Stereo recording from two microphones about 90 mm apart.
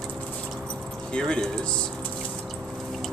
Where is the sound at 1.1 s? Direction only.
10° left (ahead or behind).